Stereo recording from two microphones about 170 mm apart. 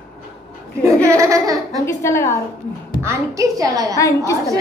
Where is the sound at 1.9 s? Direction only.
15° left (ahead or behind).